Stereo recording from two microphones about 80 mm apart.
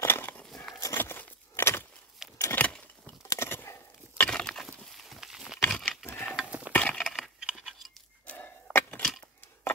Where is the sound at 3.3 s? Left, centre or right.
Left.